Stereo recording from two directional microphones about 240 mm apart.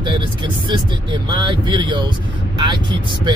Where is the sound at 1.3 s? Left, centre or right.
Centre.